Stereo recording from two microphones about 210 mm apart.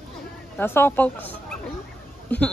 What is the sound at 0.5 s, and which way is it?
Speech, 10° left (ahead or behind).